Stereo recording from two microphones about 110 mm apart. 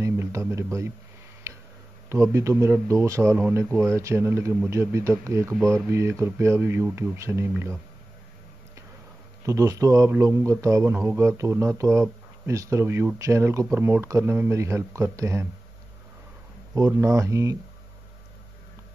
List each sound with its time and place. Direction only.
0.0 s a sound: 25° right (ahead or behind)
2.0 s a man's voice: 25° right (ahead or behind)
9.5 s a man's voice: 30° right (ahead or behind)
16.7 s a man's voice: 30° right (ahead or behind)